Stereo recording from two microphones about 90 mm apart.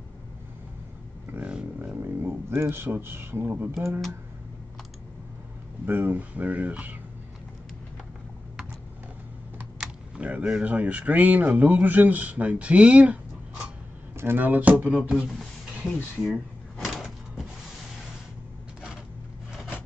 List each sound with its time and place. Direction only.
2.0 s speech: 25° right (ahead or behind)
5.9 s speech: 20° right (ahead or behind)
9.8 s speech: 15° right (ahead or behind)
14.1 s speech: 25° right (ahead or behind); by 15.4 s 5° right (ahead or behind)
16.8 s a sound: 5° right (ahead or behind)